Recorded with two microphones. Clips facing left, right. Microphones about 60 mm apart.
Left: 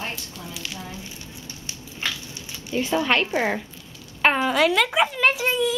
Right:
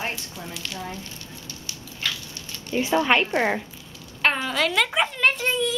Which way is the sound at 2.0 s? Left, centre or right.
Left.